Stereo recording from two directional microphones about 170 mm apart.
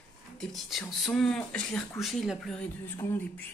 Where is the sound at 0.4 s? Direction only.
Centre (ahead or behind).